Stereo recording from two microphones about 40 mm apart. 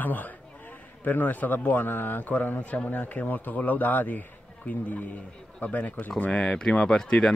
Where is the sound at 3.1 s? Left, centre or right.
Left.